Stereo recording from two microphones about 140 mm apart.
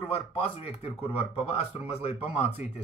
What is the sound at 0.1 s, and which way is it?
Speech, 45° left (ahead or behind).